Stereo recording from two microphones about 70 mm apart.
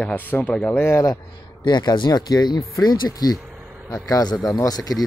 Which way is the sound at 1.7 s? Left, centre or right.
Left.